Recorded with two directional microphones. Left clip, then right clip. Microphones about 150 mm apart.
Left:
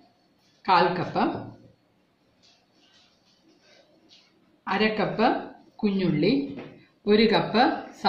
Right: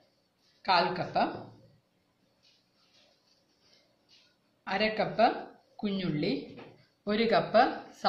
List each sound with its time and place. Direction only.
0.6 s a woman's voice: 40° right (ahead or behind)
4.6 s a woman's voice: 40° right (ahead or behind)